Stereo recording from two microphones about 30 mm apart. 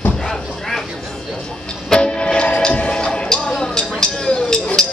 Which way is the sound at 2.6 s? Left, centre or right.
Left.